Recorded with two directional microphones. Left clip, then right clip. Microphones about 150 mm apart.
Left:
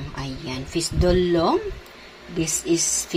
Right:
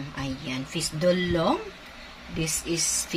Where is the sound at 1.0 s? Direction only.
25° left (ahead or behind).